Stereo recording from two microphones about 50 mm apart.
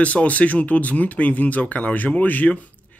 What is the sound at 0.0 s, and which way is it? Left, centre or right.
Speech, left.